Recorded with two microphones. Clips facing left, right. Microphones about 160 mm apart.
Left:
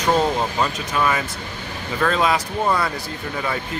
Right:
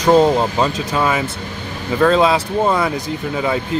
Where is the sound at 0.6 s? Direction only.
25° right (ahead or behind).